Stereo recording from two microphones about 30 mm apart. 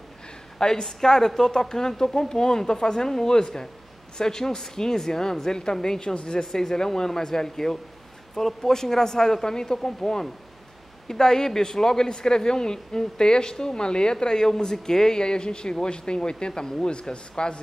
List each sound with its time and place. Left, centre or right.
0.6 s a woman's voice: centre